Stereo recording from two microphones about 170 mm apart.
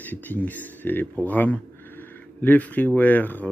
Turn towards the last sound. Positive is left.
turn(degrees=10)  # may be behind; listen again after turning